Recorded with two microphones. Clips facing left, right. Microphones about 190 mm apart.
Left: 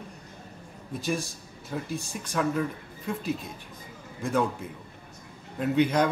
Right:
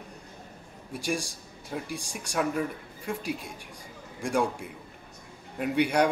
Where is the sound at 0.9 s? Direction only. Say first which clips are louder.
Left 1 dB; 10° right (ahead or behind).